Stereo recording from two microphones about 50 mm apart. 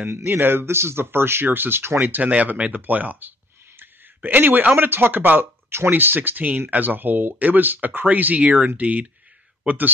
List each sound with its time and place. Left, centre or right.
0.0 s speech: right
2.0 s speech: right
3.8 s a sound: right
4.7 s speech: right
5.7 s speech: right